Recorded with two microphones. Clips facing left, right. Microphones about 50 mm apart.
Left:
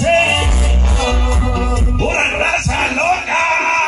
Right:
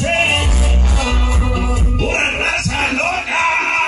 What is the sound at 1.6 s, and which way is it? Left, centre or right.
Music, centre.